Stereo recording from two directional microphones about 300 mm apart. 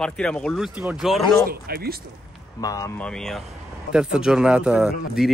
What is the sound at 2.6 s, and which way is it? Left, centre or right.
Speech, centre.